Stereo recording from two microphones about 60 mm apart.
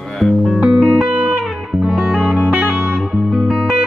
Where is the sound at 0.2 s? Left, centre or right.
Centre.